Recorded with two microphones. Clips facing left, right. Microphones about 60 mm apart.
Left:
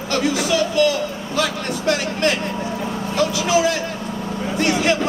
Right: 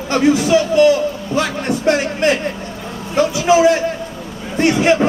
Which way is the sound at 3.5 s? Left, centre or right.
Right.